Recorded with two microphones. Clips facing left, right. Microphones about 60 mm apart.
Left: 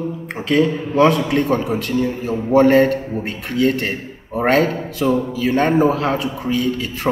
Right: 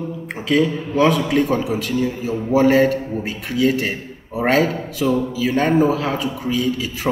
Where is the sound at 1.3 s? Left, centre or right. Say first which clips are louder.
Even; centre.